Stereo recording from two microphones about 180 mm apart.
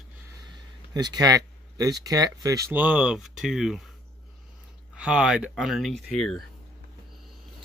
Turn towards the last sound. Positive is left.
turn(degrees=0)  # may be behind; listen again after turning